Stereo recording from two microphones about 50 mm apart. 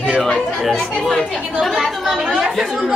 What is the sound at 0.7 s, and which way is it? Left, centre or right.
Speech, centre.